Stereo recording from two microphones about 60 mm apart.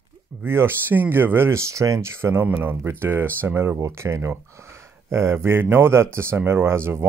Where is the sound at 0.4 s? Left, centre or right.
Right.